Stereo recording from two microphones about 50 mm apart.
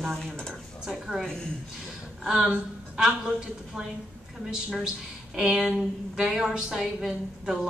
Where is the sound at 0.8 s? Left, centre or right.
Centre.